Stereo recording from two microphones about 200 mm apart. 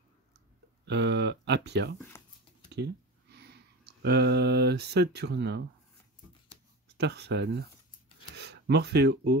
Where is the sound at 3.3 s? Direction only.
55° right (ahead or behind).